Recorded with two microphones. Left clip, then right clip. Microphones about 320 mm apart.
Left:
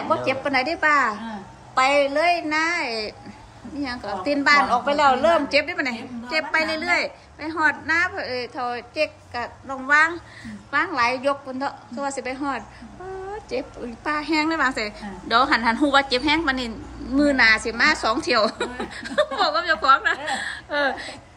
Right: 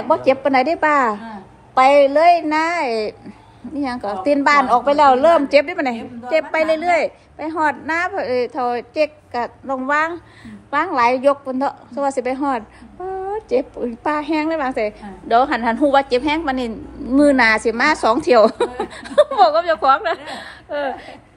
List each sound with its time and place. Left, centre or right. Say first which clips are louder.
0.1 s a woman's voice: right 7 dB; centre